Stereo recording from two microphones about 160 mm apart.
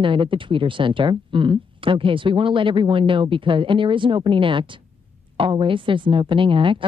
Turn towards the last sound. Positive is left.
turn(degrees=-30)  # may be behind; listen again after turning